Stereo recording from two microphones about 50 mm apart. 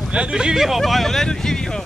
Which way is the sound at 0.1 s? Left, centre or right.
Right.